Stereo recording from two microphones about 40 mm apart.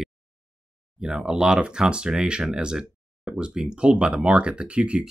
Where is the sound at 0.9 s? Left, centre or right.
Right.